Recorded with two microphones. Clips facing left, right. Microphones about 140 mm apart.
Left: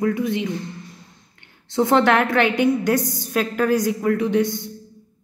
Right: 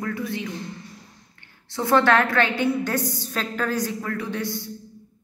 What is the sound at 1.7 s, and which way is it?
A woman's voice, 20° left (ahead or behind).